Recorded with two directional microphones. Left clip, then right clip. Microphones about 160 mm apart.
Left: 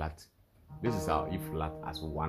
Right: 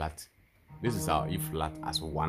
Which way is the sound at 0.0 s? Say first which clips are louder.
Right 3 dB; 15° right (ahead or behind).